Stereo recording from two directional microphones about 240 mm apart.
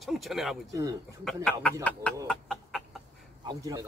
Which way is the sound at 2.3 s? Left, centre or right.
Centre.